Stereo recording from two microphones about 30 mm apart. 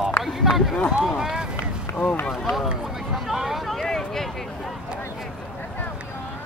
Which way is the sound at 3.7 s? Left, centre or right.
Centre.